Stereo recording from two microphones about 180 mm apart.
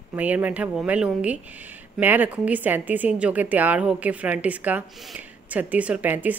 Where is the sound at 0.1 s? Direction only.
10° right (ahead or behind).